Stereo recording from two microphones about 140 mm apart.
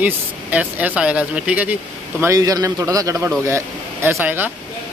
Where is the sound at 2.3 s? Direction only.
25° right (ahead or behind).